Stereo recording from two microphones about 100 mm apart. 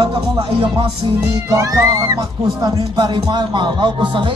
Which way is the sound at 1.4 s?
30° right (ahead or behind).